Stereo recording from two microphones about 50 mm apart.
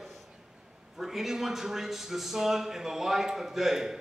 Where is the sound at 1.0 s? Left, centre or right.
Centre.